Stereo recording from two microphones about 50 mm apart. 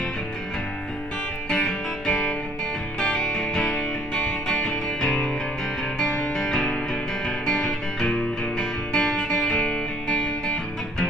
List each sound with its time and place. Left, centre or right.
1.5 s music: centre